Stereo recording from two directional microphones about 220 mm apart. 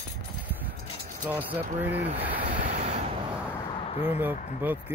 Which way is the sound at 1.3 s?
5° right (ahead or behind).